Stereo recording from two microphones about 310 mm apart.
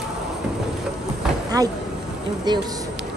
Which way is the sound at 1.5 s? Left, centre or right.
Centre.